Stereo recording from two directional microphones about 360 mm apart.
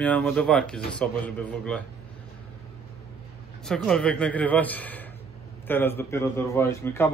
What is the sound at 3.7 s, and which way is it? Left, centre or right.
A man's voice, centre.